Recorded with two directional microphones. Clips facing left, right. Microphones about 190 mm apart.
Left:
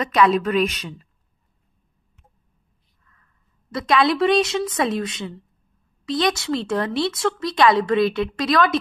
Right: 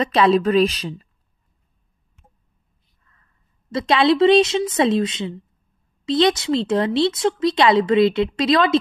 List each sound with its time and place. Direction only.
0.0 s speech: 30° right (ahead or behind)
3.7 s speech: 25° right (ahead or behind)